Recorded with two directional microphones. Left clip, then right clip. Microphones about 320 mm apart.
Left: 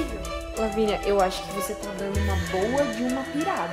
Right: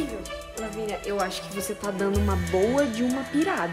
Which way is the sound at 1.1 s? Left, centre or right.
Left.